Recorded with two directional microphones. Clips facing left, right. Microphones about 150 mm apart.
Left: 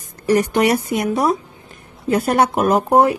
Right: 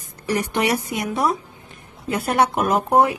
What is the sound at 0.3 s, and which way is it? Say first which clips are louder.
Speech: left 6 dB; 50° left (ahead or behind).